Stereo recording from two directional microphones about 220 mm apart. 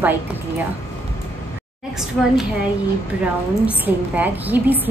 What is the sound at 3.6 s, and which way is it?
A woman's voice, 5° right (ahead or behind).